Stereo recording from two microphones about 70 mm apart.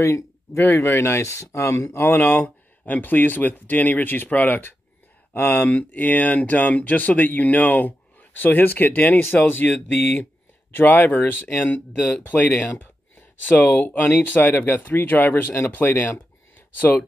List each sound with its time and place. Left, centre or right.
0.0 s speech: left